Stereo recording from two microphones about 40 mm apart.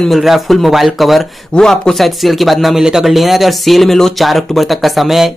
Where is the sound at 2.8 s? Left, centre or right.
Centre.